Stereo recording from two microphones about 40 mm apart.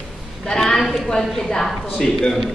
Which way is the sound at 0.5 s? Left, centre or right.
Centre.